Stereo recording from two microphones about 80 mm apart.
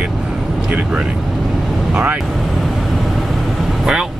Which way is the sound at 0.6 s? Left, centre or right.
Centre.